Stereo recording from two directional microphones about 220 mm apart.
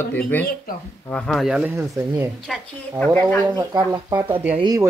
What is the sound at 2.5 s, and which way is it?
Speech, centre (ahead or behind).